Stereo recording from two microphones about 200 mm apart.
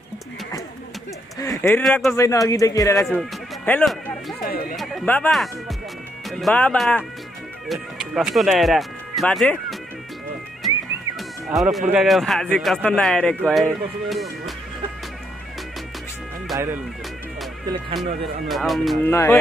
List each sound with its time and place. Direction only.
1.4 s speech: 15° left (ahead or behind)
2.1 s a man's voice: 15° left (ahead or behind)
3.2 s music: 5° left (ahead or behind)
4.7 s a man's voice: 5° left (ahead or behind)
11.1 s cat: centre (ahead or behind)
11.9 s speech: centre (ahead or behind)
16.5 s speech: 10° right (ahead or behind)
18.5 s speech: centre (ahead or behind)
19.0 s a man's voice: 10° left (ahead or behind)